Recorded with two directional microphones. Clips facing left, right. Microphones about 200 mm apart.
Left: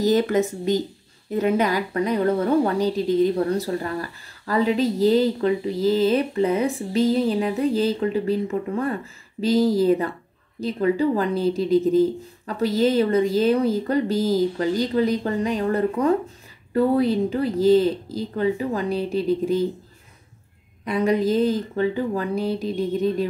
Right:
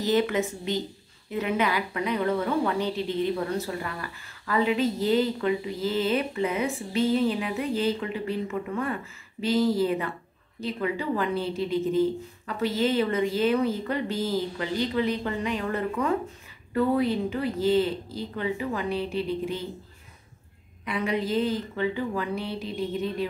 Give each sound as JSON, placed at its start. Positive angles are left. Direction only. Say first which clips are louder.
{"t": 0.0, "sound": "a woman's voice", "louder": "left 5 dB", "side_deg": 40}
{"t": 20.8, "sound": "a woman's voice", "louder": "left 7 dB", "side_deg": 40}